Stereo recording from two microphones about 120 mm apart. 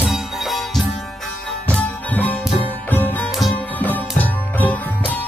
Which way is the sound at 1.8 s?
15° left (ahead or behind).